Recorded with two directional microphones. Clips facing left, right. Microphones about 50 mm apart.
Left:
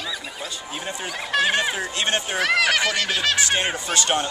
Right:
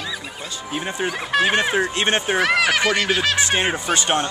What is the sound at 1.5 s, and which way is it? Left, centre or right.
Speech, right.